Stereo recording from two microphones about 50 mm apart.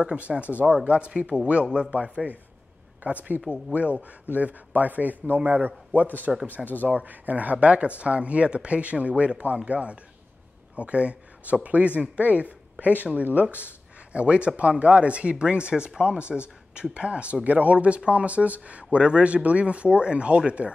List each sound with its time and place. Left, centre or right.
0.0 s speech: right
3.0 s speech: right
6.5 s speech: left
6.8 s speech: right